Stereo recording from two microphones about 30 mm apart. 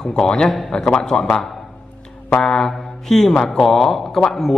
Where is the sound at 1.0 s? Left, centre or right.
Left.